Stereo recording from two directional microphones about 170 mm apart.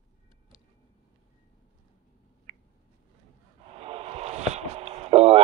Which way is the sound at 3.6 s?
35° right (ahead or behind).